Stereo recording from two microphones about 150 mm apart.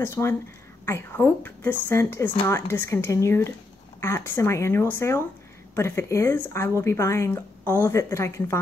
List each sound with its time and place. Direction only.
0.0 s a woman's voice: 20° left (ahead or behind)